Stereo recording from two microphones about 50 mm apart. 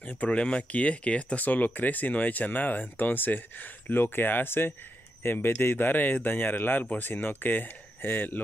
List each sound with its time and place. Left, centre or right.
0.0 s speech: left
1.4 s speech: left